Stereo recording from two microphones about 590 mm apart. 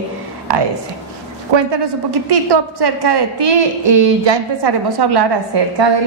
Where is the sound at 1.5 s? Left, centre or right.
Right.